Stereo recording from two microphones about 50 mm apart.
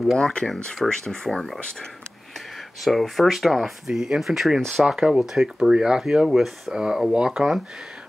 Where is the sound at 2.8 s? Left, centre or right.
Centre.